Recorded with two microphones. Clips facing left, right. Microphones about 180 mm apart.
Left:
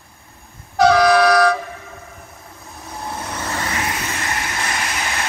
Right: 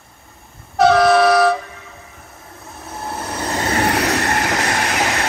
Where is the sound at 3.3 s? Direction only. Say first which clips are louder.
Right 6 dB; 35° right (ahead or behind).